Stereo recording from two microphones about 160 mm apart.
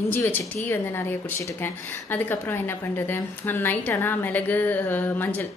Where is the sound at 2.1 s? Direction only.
10° left (ahead or behind).